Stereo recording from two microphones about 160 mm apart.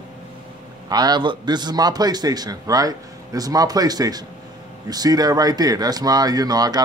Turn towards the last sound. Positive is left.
turn(degrees=-25)  # may be behind; listen again after turning